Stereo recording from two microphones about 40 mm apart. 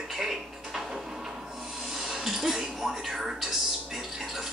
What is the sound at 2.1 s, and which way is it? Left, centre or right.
Speech, centre.